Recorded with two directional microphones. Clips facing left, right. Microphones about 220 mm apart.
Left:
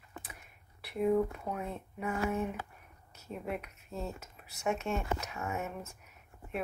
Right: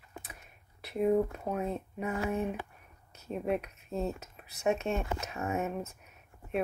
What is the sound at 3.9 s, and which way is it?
Speech, 20° right (ahead or behind).